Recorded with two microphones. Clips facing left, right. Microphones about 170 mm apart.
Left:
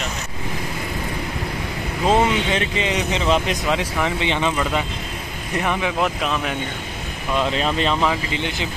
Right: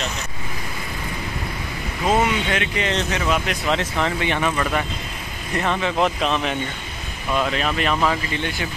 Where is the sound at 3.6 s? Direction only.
10° left (ahead or behind).